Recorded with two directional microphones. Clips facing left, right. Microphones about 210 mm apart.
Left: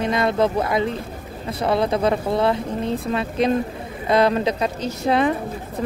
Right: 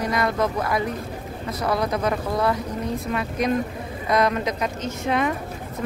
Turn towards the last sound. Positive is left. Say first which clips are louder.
# left 4 dB
turn(degrees=35)  # may be behind; listen again after turning